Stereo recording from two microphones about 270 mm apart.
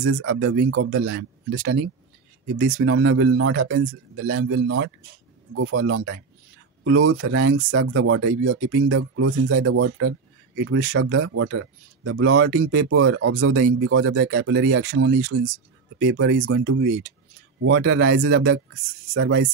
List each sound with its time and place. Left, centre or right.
0.0 s speech: right